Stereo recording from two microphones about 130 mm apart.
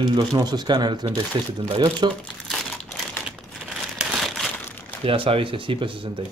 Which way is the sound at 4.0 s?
Centre (ahead or behind).